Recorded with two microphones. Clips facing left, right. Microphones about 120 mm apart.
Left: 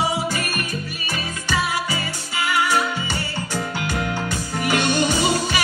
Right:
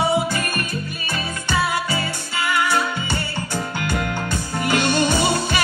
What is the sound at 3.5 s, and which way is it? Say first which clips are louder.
Music: right 1 dB; 15° left (ahead or behind).